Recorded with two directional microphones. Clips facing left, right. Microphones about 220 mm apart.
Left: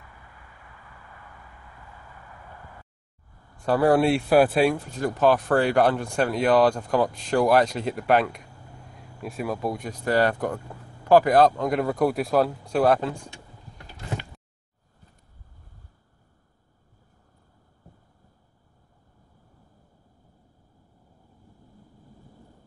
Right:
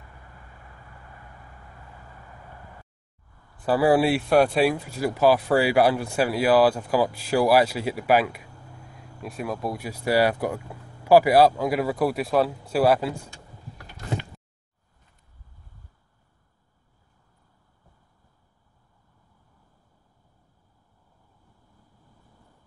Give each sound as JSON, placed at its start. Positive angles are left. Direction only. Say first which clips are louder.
{"t": 3.5, "sound": "speech", "louder": "even", "side_deg": -5}